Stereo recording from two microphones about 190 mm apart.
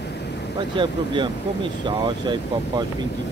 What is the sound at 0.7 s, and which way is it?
Speech, 25° right (ahead or behind).